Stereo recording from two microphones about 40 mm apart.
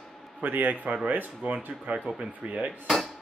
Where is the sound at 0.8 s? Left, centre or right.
Right.